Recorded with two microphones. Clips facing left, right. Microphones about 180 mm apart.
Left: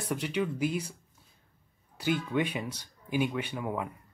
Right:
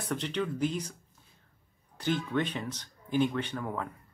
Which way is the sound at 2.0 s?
10° left (ahead or behind).